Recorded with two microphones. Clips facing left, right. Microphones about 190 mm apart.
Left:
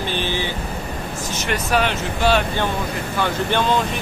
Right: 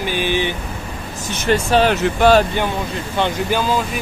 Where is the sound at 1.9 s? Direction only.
65° right (ahead or behind).